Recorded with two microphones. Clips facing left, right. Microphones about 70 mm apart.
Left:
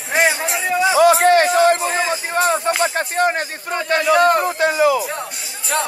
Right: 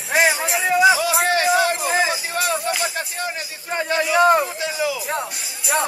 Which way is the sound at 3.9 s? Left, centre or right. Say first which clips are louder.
Left 6 dB; left.